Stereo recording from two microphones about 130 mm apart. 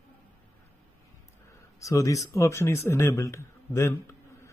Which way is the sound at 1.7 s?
25° left (ahead or behind).